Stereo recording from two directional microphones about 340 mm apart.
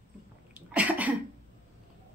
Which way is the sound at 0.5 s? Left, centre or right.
Centre.